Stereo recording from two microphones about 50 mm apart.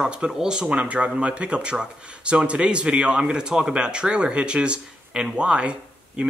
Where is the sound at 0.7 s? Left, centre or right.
Right.